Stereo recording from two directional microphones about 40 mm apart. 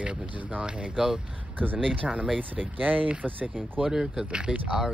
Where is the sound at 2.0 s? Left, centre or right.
Right.